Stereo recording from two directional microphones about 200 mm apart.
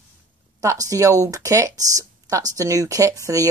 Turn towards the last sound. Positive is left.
turn(degrees=-15)  # may be behind; listen again after turning